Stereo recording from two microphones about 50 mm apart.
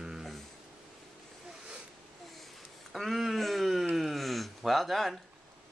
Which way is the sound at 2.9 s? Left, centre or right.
Centre.